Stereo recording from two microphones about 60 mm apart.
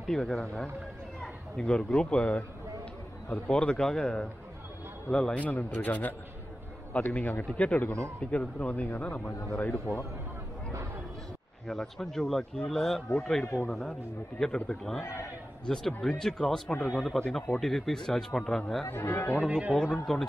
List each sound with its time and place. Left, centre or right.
0.0 s a man's voice: centre
3.4 s a man's voice: centre
5.4 s speech: left
9.6 s speech: left
11.6 s a man's voice: centre
15.6 s a man's voice: centre
18.9 s speech: left
19.4 s a man's voice: right
19.8 s speech: centre